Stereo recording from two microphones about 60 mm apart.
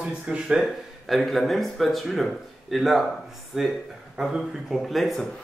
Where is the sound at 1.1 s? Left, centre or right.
Centre.